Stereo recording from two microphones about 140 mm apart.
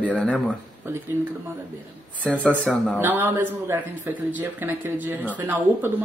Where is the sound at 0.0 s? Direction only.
5° left (ahead or behind).